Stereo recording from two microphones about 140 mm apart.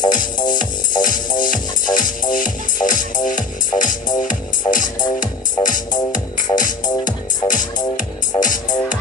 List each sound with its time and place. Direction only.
0.5 s music: 70° left (ahead or behind)